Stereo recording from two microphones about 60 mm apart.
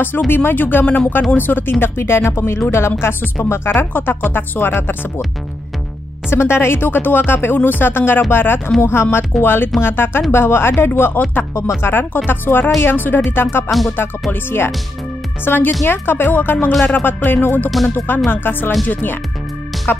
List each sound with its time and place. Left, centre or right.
0.3 s speech: left
6.3 s speech: left
13.7 s music: centre
14.3 s speech: left